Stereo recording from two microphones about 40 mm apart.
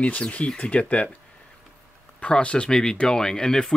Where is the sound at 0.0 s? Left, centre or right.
Left.